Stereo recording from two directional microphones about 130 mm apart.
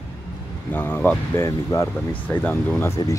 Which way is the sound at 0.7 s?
15° left (ahead or behind).